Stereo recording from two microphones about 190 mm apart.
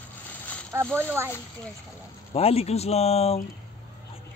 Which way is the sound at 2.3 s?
30° left (ahead or behind).